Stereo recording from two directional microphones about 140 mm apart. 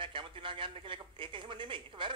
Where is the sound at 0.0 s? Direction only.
35° right (ahead or behind).